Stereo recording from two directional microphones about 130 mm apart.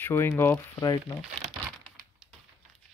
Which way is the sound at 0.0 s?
15° left (ahead or behind).